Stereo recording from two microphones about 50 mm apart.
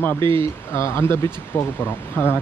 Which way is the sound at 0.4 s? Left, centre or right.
Left.